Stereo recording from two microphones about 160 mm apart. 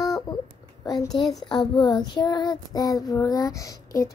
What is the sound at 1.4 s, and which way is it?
Child singing, 30° left (ahead or behind).